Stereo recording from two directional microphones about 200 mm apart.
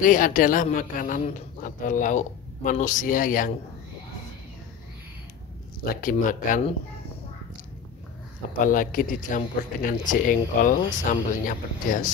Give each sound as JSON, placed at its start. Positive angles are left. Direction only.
{"t": 0.0, "sound": "a man's voice", "side_deg": 40}
{"t": 5.9, "sound": "a man's voice", "side_deg": 45}
{"t": 8.5, "sound": "speech", "side_deg": 40}